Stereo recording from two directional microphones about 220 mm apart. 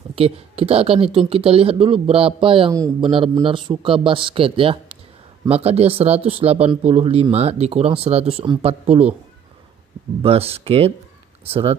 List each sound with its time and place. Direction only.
0.1 s speech: 25° right (ahead or behind)
10.2 s speech: 25° right (ahead or behind)